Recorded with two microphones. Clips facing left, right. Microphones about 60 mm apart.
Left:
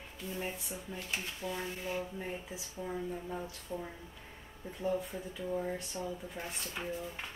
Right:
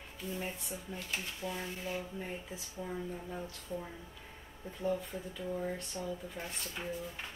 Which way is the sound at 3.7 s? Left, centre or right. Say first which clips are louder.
Even; left.